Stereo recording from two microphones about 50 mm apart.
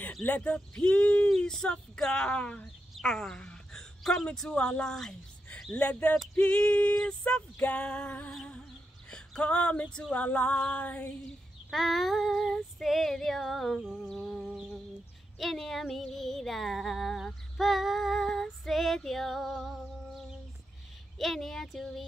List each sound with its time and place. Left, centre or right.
0.4 s female singing: left
1.5 s speech: centre
3.0 s a woman's voice: centre
5.5 s speech: left
6.4 s female singing: left
9.4 s female singing: left
11.2 s female singing: centre
13.9 s speech: centre
14.4 s a sound: centre
15.3 s female singing: centre